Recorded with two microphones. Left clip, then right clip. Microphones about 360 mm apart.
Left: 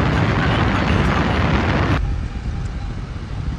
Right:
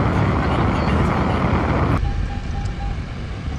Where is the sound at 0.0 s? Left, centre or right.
Centre.